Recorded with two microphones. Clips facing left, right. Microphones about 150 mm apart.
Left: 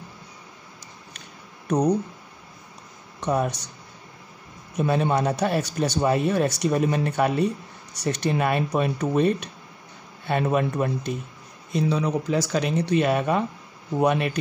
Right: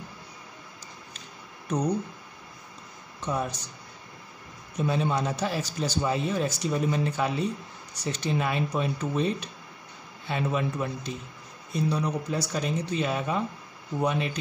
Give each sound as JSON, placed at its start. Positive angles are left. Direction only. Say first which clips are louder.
{"t": 3.2, "sound": "speech", "louder": "left 6 dB", "side_deg": 65}
{"t": 4.7, "sound": "a man's voice", "louder": "left 4 dB", "side_deg": 60}
{"t": 11.7, "sound": "a man's voice", "louder": "left 4 dB", "side_deg": 90}